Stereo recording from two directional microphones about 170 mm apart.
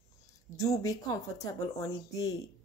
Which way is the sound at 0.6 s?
20° left (ahead or behind).